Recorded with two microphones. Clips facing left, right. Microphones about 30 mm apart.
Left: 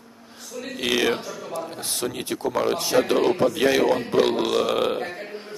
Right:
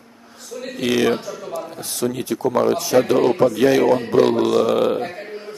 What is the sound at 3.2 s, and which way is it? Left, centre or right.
A man's voice, centre.